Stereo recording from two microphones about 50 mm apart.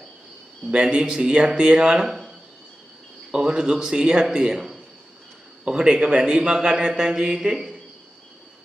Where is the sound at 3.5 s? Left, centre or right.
Centre.